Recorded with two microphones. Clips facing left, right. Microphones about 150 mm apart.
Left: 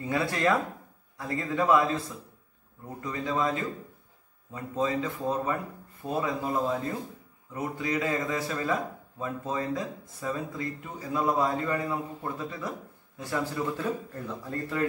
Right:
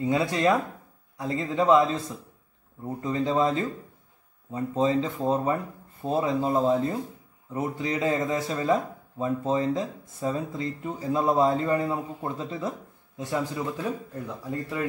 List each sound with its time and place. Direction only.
0.0 s speech: 20° right (ahead or behind)